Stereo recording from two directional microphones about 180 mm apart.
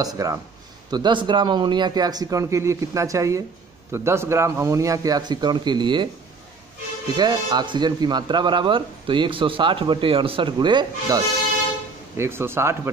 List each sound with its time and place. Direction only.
0.0 s a man's voice: 20° right (ahead or behind)
7.2 s a man's voice: 25° right (ahead or behind)